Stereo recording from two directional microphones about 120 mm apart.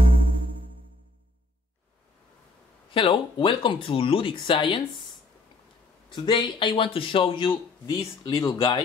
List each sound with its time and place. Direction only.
0.0 s music: 50° right (ahead or behind)
2.9 s speech: 45° left (ahead or behind)
6.0 s speech: 40° left (ahead or behind)